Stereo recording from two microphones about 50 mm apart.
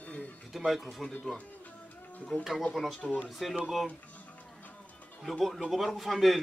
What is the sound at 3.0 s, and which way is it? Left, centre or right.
Speech, left.